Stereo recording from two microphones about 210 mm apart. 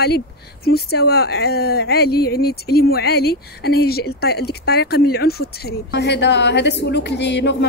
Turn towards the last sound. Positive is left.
turn(degrees=55)  # may be behind; listen again after turning